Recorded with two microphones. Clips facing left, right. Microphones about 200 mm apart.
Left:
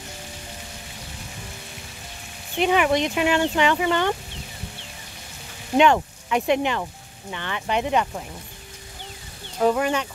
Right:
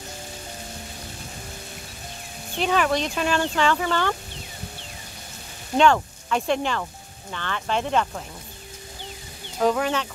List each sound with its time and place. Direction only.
2.6 s speech: 15° left (ahead or behind)
5.8 s speech: 15° left (ahead or behind)
9.6 s speech: 10° left (ahead or behind)